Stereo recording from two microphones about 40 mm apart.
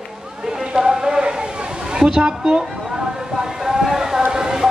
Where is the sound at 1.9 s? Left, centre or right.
Centre.